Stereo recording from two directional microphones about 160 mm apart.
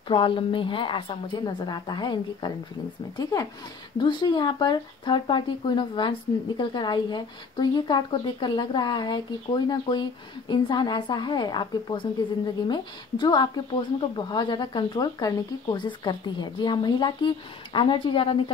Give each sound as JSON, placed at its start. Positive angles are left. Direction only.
{"t": 0.1, "sound": "a woman's voice", "side_deg": 30}